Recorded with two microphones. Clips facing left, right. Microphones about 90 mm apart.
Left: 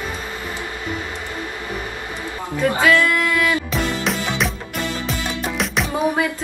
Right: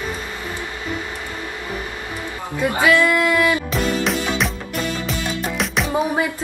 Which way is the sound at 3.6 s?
Centre (ahead or behind).